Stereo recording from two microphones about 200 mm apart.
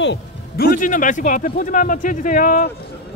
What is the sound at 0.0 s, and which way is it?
Music, 60° left (ahead or behind).